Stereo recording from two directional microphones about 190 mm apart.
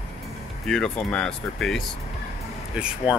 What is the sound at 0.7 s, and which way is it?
Speech, 5° left (ahead or behind).